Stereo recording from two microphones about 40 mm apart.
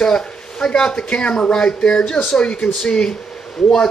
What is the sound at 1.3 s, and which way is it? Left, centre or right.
Speech, centre.